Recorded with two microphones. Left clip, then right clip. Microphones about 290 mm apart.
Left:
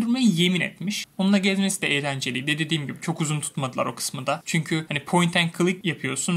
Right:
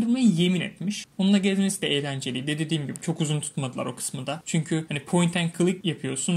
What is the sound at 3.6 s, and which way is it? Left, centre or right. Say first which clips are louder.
Speech: left 7 dB; left.